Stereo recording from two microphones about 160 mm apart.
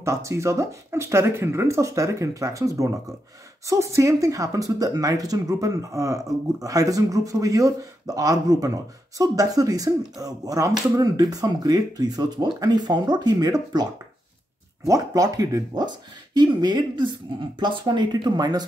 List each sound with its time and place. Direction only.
0.0 s speech: 20° right (ahead or behind)
14.9 s speech: 20° right (ahead or behind)